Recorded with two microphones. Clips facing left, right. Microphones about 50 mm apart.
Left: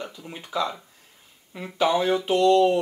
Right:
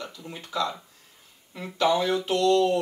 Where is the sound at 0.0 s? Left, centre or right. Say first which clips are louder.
Left 2 dB; centre.